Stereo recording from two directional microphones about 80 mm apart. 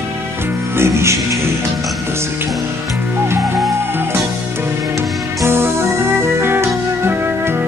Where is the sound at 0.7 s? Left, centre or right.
Right.